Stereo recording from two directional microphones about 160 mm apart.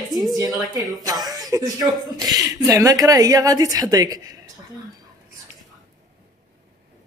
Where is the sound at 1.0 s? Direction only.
25° right (ahead or behind).